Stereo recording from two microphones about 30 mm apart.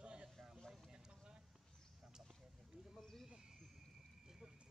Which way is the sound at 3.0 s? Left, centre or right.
Centre.